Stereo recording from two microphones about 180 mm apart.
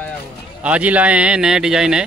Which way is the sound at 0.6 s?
10° right (ahead or behind).